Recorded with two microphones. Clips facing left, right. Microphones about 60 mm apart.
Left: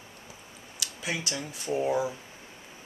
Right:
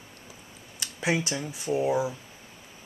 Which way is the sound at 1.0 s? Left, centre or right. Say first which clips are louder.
Right 7 dB; right.